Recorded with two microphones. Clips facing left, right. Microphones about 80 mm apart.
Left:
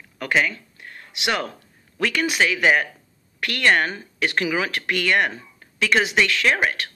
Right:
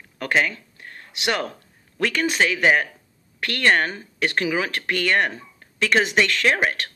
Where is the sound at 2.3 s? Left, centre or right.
Right.